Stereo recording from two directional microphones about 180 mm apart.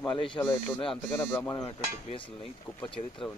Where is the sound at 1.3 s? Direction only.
10° left (ahead or behind).